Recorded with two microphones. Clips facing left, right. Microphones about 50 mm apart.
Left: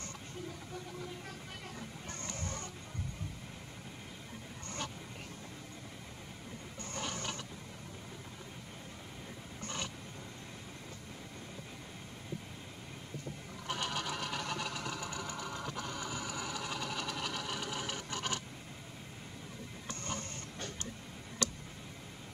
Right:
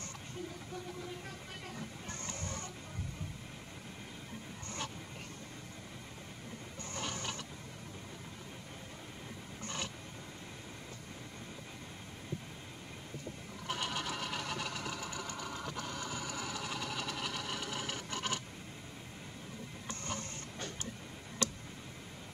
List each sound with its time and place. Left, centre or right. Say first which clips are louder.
2.0 s music: left 2 dB; right
7.0 s mechanisms: left 1 dB; centre
13.7 s vehicle: left 1 dB; centre